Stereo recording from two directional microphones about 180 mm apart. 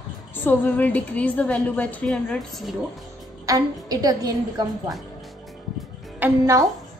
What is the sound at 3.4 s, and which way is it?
A woman's voice, 20° right (ahead or behind).